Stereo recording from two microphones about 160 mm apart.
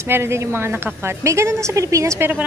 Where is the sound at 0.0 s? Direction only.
15° right (ahead or behind).